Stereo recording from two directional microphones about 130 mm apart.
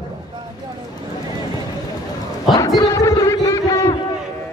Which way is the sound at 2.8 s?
25° left (ahead or behind).